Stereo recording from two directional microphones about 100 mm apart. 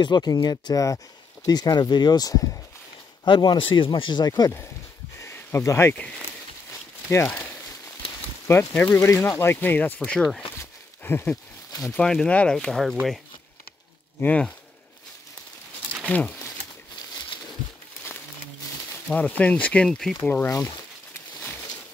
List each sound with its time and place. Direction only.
0.0 s speech: 45° left (ahead or behind)
3.3 s speech: 55° left (ahead or behind)
4.3 s speech: 30° left (ahead or behind)
5.2 s a sound: 25° left (ahead or behind)
5.9 s speech: 10° left (ahead or behind)
7.1 s speech: 25° left (ahead or behind)
8.5 s speech: 25° left (ahead or behind)
10.6 s a sound: 20° left (ahead or behind)
11.9 s speech: 5° left (ahead or behind)
14.2 s speech: 15° left (ahead or behind)
16.0 s a sound: 15° left (ahead or behind)
19.1 s speech: 15° left (ahead or behind)
20.2 s speech: 15° left (ahead or behind)
20.4 s speech: 35° left (ahead or behind)